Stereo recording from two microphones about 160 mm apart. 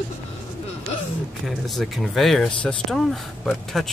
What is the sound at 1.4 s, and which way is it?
Speech, centre (ahead or behind).